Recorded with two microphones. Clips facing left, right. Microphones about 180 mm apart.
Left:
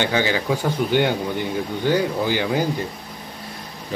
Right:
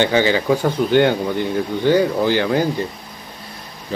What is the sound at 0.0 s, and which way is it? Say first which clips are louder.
Speech: right 5 dB; 10° left (ahead or behind).